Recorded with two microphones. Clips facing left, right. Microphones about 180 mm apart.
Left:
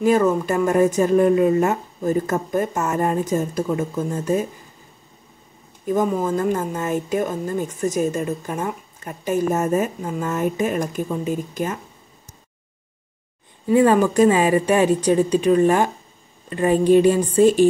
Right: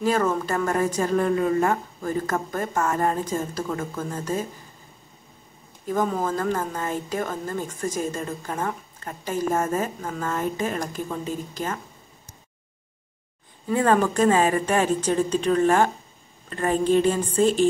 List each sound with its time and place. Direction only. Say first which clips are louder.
0.0 s a woman's voice: left 5 dB; 20° left (ahead or behind)
5.9 s a woman's voice: left 4 dB; 20° left (ahead or behind)
13.7 s a woman's voice: left 5 dB; 15° left (ahead or behind)